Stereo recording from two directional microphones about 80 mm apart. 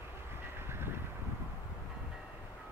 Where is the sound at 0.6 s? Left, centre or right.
Right.